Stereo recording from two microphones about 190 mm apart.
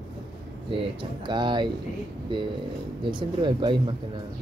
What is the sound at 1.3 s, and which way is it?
Speech, 25° right (ahead or behind).